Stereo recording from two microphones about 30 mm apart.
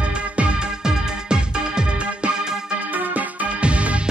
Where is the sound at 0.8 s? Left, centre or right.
Right.